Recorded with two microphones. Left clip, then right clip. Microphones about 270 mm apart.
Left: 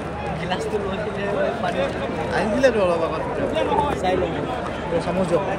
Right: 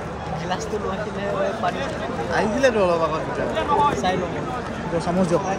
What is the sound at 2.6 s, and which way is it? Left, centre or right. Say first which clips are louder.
Speech: even; right.